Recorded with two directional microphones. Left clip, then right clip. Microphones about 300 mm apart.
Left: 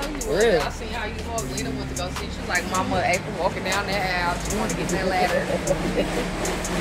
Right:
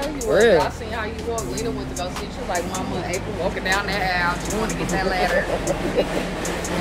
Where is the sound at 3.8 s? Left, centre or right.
Centre.